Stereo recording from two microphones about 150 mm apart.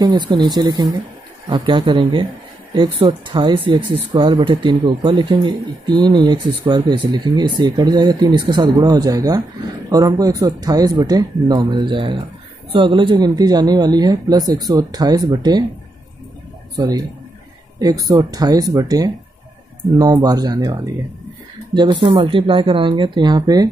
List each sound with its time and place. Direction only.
0.0 s speech: 30° right (ahead or behind)
16.7 s speech: 25° right (ahead or behind)
18.1 s speech: 25° right (ahead or behind)